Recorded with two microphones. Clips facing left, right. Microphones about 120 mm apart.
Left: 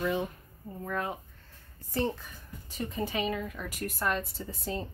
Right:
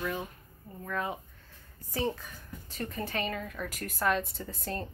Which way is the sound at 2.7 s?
10° left (ahead or behind).